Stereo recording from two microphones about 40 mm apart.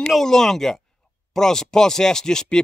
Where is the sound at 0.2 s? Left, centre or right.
Centre.